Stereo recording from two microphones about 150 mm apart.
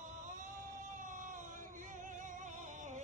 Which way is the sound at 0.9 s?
55° right (ahead or behind).